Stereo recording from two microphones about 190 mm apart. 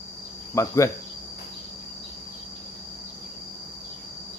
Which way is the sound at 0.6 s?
15° left (ahead or behind).